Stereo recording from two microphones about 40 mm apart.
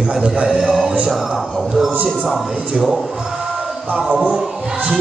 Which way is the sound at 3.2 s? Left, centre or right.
Centre.